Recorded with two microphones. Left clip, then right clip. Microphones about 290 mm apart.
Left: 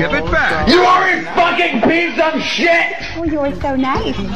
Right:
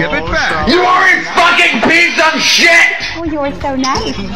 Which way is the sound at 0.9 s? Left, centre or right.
Centre.